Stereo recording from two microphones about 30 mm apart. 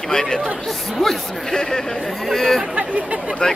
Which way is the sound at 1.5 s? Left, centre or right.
Centre.